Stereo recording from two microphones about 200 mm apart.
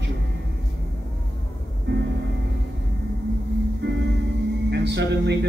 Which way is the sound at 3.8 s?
60° right (ahead or behind).